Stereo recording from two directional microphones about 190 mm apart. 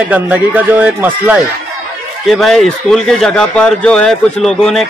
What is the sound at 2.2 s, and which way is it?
Speech, centre (ahead or behind).